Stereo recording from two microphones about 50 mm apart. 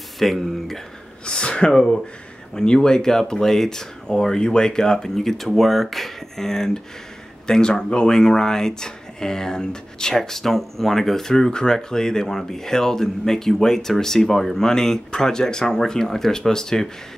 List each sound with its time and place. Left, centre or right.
0.2 s speech: centre
1.2 s speech: centre